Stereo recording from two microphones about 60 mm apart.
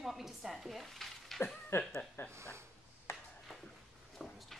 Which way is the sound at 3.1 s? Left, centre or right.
Left.